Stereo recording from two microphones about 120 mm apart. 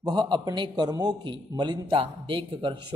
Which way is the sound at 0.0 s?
40° right (ahead or behind).